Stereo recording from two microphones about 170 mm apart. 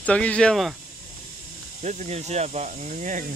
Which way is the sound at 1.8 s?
45° right (ahead or behind).